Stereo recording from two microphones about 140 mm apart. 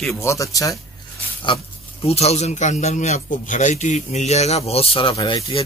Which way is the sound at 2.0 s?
50° left (ahead or behind).